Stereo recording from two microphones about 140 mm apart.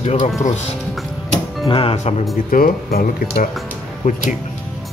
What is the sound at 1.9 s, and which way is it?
Speech, 50° left (ahead or behind).